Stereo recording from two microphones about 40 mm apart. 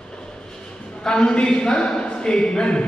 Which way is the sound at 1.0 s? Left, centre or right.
Left.